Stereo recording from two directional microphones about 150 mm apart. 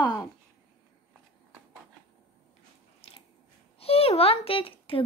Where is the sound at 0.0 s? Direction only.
25° left (ahead or behind).